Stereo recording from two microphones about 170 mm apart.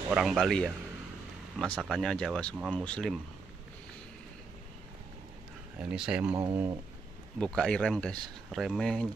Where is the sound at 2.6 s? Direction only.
5° right (ahead or behind).